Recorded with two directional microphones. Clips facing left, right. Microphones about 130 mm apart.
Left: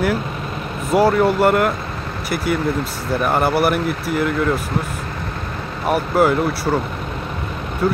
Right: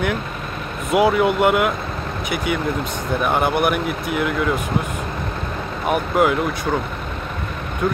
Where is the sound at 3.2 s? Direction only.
5° left (ahead or behind).